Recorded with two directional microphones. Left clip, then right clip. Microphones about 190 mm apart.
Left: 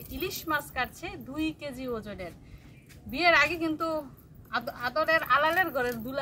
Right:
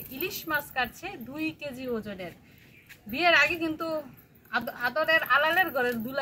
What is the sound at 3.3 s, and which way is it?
Speech, 15° left (ahead or behind).